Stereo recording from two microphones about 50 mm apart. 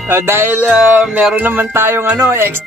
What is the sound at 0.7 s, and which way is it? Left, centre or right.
Music, right.